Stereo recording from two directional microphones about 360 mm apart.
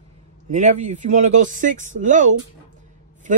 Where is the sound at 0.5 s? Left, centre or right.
Centre.